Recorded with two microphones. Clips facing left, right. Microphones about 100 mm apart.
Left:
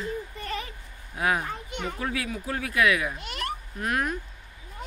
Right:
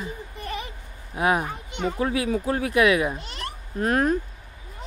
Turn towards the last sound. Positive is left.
turn(degrees=-35)  # may be behind; listen again after turning